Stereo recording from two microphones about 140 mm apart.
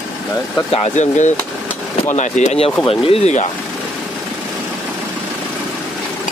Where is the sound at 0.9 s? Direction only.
60° left (ahead or behind).